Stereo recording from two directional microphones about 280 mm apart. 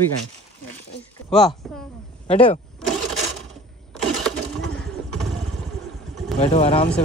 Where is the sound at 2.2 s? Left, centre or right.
Left.